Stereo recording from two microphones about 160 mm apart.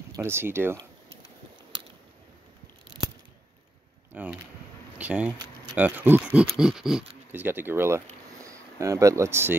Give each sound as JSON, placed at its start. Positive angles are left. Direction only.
{"t": 0.1, "sound": "speech", "side_deg": -15}
{"t": 4.1, "sound": "speech", "side_deg": -10}